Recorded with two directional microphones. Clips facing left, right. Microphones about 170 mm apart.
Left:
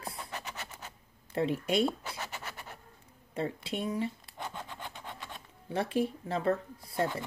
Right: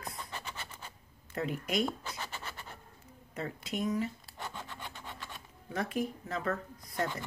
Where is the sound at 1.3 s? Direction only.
30° left (ahead or behind).